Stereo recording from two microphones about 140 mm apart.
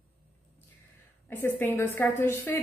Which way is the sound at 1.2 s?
15° left (ahead or behind).